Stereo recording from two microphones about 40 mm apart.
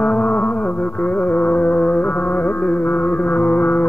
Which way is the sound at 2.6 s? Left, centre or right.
Left.